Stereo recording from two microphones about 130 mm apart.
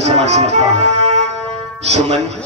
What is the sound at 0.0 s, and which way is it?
Speech, 55° right (ahead or behind).